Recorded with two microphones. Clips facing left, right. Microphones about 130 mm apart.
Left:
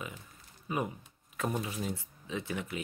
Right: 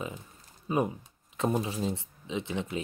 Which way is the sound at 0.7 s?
25° right (ahead or behind).